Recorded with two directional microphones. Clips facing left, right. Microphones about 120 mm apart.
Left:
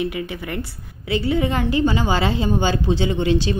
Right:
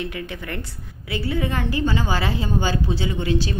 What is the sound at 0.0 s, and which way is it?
A woman's voice, 10° left (ahead or behind).